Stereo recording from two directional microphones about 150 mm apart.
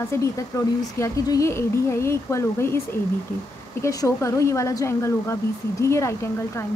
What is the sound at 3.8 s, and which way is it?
Speech, 20° left (ahead or behind).